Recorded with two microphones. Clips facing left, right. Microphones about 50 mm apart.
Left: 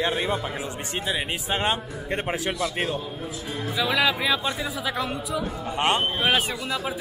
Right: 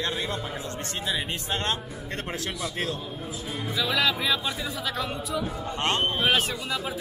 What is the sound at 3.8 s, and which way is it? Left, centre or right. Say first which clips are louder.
Speech: left 3 dB; centre.